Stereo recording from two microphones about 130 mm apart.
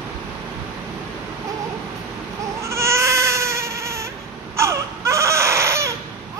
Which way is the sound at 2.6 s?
20° right (ahead or behind).